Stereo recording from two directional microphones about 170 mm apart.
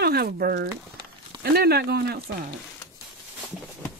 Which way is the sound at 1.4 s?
65° right (ahead or behind).